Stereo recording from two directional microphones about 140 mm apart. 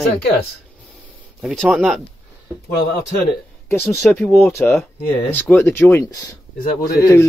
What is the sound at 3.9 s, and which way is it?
Speech, 5° left (ahead or behind).